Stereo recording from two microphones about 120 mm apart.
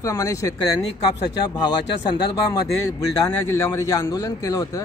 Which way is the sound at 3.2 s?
25° left (ahead or behind).